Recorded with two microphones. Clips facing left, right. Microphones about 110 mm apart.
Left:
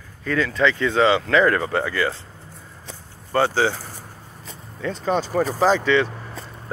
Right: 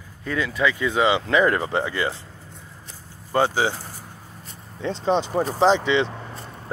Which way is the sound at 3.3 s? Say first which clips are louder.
Left 1 dB; 15° right (ahead or behind).